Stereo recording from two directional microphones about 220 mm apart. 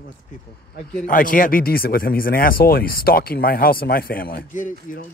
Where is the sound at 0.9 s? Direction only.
40° left (ahead or behind).